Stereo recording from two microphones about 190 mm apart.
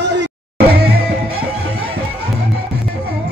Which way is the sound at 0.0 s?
60° right (ahead or behind).